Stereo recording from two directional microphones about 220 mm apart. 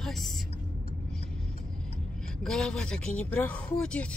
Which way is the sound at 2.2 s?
Centre (ahead or behind).